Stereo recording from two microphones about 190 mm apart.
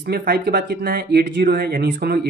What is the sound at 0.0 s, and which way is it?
Speech, 55° right (ahead or behind).